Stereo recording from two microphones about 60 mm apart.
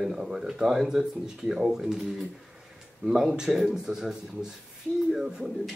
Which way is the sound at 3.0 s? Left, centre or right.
Right.